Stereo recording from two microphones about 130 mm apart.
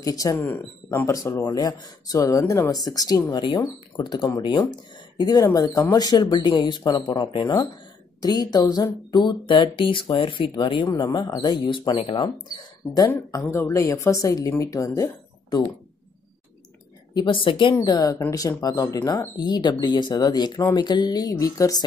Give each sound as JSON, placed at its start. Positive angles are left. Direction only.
{"t": 0.0, "sound": "speech", "side_deg": 25}
{"t": 13.5, "sound": "speech", "side_deg": 20}
{"t": 17.1, "sound": "speech", "side_deg": 35}